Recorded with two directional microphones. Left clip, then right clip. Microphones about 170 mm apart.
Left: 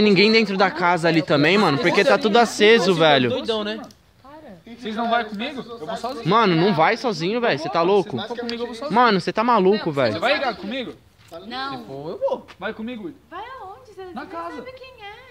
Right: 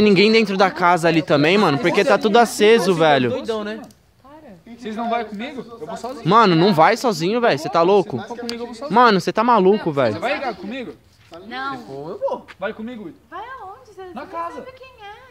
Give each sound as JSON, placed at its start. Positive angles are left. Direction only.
{"t": 0.0, "sound": "speech", "side_deg": -15}
{"t": 3.3, "sound": "speech", "side_deg": 5}
{"t": 4.8, "sound": "speech", "side_deg": -10}
{"t": 6.2, "sound": "speech", "side_deg": -25}
{"t": 8.2, "sound": "speech", "side_deg": 25}
{"t": 8.9, "sound": "speech", "side_deg": -25}
{"t": 10.1, "sound": "speech", "side_deg": -5}
{"t": 11.4, "sound": "speech", "side_deg": 35}
{"t": 12.0, "sound": "speech", "side_deg": 20}
{"t": 12.5, "sound": "speech", "side_deg": -30}
{"t": 14.1, "sound": "speech", "side_deg": -30}